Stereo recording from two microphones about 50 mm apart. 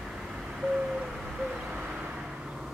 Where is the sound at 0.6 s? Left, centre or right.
Centre.